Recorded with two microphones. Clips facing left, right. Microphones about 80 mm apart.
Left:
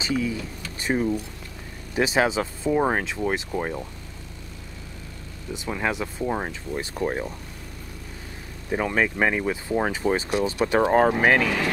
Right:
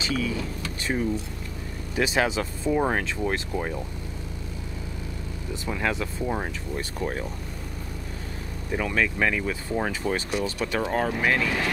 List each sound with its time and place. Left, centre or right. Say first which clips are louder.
0.0 s speech: left 1 dB; left
5.7 s speech: left 1 dB; centre
8.7 s speech: left 2 dB; left
11.3 s speech: left 3 dB; left